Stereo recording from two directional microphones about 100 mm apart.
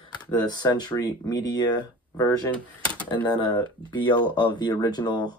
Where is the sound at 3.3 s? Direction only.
50° left (ahead or behind).